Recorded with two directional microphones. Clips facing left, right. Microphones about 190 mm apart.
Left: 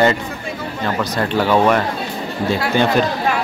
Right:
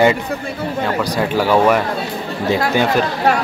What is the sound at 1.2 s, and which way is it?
Speech, 10° right (ahead or behind).